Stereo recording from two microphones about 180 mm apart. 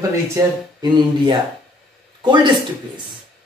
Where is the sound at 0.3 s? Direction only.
25° right (ahead or behind).